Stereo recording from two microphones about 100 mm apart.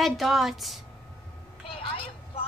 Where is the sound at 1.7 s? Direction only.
70° left (ahead or behind).